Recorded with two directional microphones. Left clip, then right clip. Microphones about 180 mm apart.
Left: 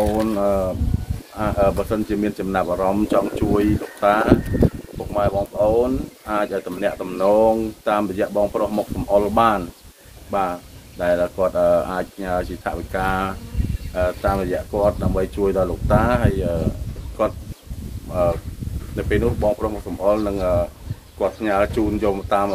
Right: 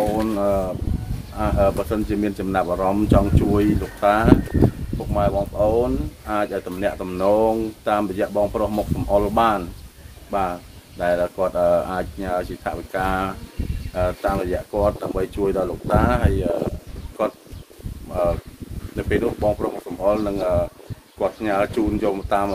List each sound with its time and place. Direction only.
0.0 s a sound: 10° right (ahead or behind)
1.4 s speech: 15° right (ahead or behind)
18.9 s speech: 15° right (ahead or behind)